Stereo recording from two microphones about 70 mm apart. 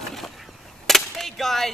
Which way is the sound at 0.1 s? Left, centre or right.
Centre.